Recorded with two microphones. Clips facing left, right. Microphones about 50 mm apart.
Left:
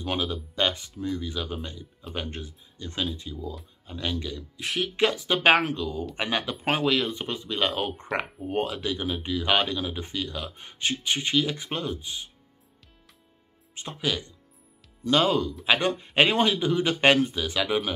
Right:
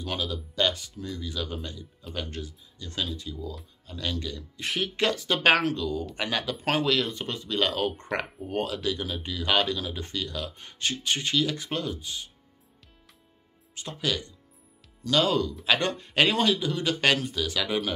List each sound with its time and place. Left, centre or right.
0.0 s speech: left
4.6 s speech: centre
4.9 s speech: centre
8.1 s speech: centre
8.5 s speech: left
13.9 s speech: centre
15.2 s speech: centre